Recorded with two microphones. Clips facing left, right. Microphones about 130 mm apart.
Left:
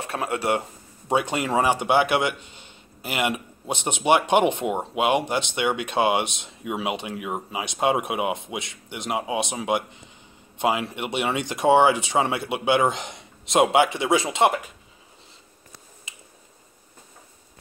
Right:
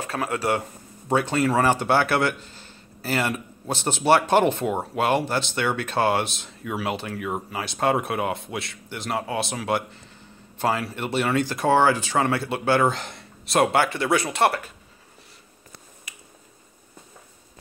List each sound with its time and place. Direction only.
0.0 s speech: 25° left (ahead or behind)